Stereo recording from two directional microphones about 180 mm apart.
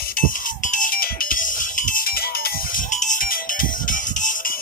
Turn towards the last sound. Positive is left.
turn(degrees=50)  # may be behind; listen again after turning